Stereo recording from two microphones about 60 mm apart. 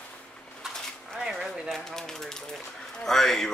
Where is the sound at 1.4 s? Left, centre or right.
Centre.